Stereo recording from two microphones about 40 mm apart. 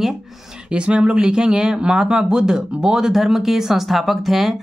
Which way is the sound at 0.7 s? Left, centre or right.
Right.